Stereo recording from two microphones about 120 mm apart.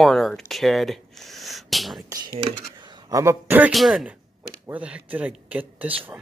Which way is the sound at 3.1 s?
25° right (ahead or behind).